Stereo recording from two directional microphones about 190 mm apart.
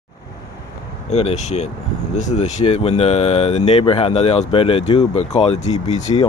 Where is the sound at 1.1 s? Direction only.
35° left (ahead or behind).